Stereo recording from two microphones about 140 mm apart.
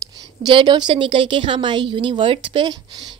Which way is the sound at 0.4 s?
30° right (ahead or behind).